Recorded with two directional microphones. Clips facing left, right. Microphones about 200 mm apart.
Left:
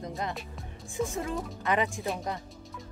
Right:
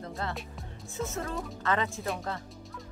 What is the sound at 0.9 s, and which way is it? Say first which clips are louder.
Speech: left 3 dB; 15° left (ahead or behind).